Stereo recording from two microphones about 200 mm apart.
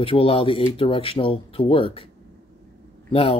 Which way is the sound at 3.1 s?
30° left (ahead or behind).